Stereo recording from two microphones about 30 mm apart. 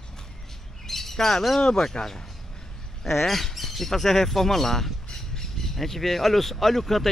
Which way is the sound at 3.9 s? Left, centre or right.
Centre.